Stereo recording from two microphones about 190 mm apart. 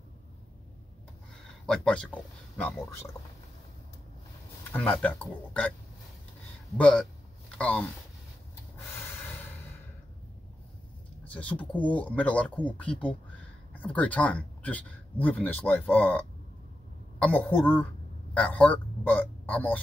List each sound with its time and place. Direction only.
1.7 s speech: 5° left (ahead or behind)
4.7 s speech: 10° left (ahead or behind)
6.8 s speech: 5° left (ahead or behind)
9.0 s snort: 10° left (ahead or behind)
11.3 s speech: 5° left (ahead or behind)